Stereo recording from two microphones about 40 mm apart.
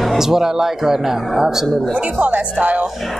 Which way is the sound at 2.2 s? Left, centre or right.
Right.